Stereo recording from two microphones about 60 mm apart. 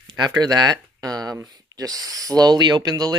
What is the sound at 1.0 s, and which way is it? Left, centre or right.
Speech, right.